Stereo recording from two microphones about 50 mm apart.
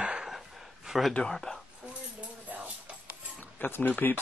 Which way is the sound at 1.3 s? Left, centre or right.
Centre.